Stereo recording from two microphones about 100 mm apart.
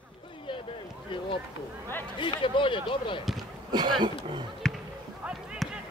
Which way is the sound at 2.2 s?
55° left (ahead or behind).